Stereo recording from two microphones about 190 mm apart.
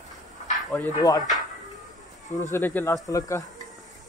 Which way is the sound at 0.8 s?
20° left (ahead or behind).